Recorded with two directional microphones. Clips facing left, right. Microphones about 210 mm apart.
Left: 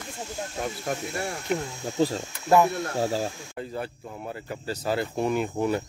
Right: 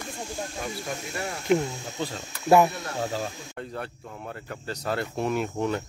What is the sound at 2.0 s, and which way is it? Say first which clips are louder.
Speech: left 8 dB; 35° left (ahead or behind).